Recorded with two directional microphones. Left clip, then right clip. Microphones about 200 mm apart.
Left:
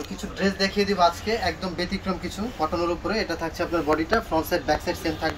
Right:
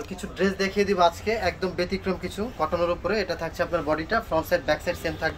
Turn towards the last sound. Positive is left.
turn(degrees=-30)  # may be behind; listen again after turning